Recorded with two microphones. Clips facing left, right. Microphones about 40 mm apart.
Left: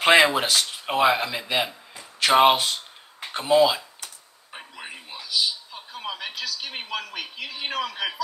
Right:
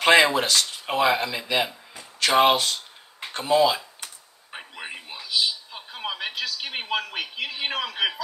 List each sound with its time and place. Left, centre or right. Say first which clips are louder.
0.0 s speech: even; centre
4.5 s a sound: right 2 dB; centre
7.1 s speech: right 3 dB; right